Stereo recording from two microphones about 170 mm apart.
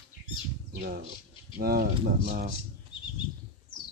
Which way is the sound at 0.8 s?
60° right (ahead or behind).